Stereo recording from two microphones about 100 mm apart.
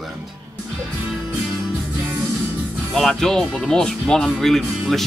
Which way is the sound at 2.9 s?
5° left (ahead or behind).